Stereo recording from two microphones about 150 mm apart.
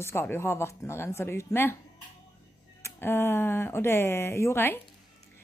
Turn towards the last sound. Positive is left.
turn(degrees=15)  # may be behind; listen again after turning